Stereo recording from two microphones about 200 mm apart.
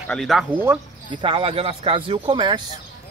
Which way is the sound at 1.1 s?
25° right (ahead or behind).